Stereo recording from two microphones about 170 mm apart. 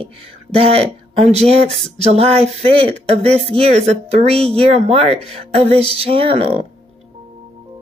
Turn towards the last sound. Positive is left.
turn(degrees=-35)  # may be behind; listen again after turning